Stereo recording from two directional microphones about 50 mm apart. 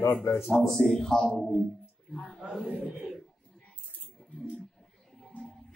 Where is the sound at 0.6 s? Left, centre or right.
Centre.